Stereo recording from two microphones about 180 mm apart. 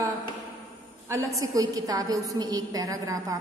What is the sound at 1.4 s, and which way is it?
A woman's voice, 20° right (ahead or behind).